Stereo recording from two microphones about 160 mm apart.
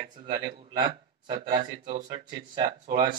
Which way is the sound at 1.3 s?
50° right (ahead or behind).